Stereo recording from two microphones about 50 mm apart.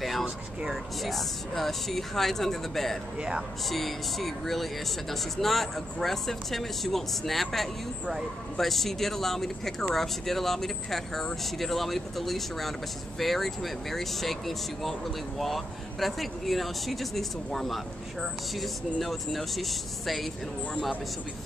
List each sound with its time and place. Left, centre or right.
0.2 s speech: centre
1.0 s speech: centre
3.2 s speech: centre
3.6 s speech: centre
18.9 s speech: centre